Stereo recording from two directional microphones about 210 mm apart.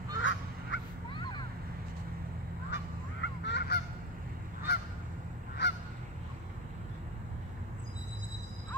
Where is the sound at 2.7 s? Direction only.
55° left (ahead or behind).